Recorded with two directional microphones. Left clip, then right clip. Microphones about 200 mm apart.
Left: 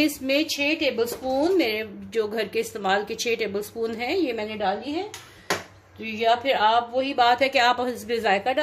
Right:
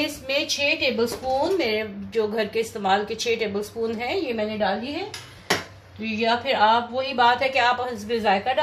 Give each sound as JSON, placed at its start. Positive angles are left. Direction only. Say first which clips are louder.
{"t": 0.0, "sound": "a woman's voice", "louder": "left 2 dB", "side_deg": 55}
{"t": 6.0, "sound": "a woman's voice", "louder": "left 1 dB", "side_deg": 55}